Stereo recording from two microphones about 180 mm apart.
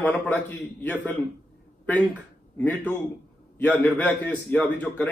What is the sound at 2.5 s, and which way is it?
A man's voice, 10° left (ahead or behind).